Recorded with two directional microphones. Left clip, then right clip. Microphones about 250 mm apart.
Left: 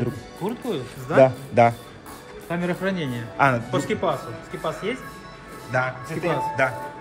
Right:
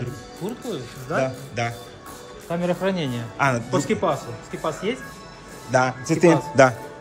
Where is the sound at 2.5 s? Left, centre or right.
Centre.